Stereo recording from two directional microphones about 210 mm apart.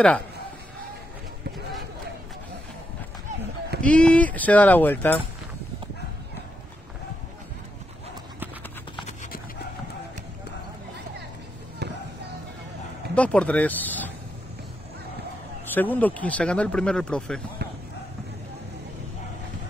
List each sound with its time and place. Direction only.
3.8 s speech: 5° left (ahead or behind)
11.8 s basketball bounce: 50° right (ahead or behind)
13.1 s speech: 5° left (ahead or behind)
15.7 s speech: 10° left (ahead or behind)
17.6 s a sound: 50° right (ahead or behind)